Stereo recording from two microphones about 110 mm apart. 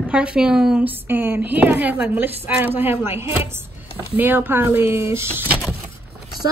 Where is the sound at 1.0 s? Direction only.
20° right (ahead or behind).